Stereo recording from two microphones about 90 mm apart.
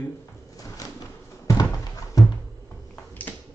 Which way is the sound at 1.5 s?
40° left (ahead or behind).